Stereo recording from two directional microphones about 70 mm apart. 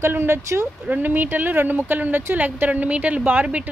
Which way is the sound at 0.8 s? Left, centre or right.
Right.